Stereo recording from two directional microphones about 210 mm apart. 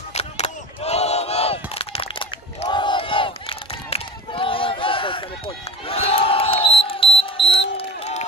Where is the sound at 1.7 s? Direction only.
30° left (ahead or behind).